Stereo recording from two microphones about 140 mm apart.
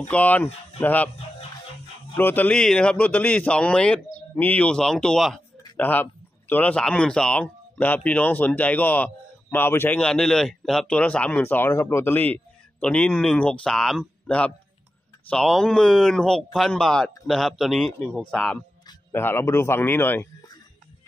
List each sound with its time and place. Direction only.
0.1 s speech: 10° left (ahead or behind)
2.1 s speech: 15° left (ahead or behind)